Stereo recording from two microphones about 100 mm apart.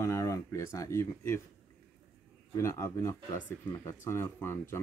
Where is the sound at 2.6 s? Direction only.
25° left (ahead or behind).